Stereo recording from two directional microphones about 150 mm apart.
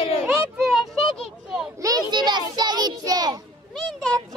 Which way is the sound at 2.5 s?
30° right (ahead or behind).